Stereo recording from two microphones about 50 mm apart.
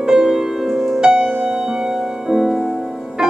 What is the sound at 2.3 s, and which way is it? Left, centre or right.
Music, centre.